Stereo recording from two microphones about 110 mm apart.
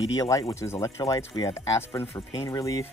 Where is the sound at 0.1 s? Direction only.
35° left (ahead or behind).